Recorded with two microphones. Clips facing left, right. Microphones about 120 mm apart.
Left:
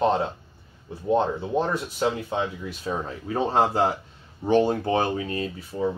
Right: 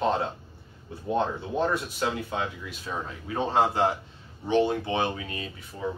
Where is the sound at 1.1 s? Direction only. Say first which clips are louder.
Left 4 dB; 30° left (ahead or behind).